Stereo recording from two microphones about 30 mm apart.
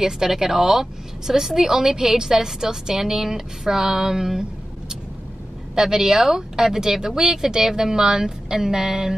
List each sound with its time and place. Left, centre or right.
0.0 s a woman's voice: centre